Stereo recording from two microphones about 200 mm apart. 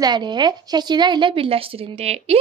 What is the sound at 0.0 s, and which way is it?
A woman's voice, 20° right (ahead or behind).